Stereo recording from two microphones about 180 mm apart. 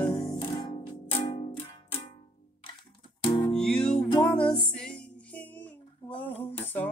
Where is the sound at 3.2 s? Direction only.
25° left (ahead or behind).